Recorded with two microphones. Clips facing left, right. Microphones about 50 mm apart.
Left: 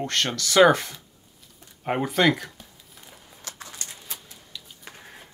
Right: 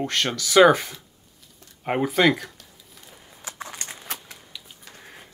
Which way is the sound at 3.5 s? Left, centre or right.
Right.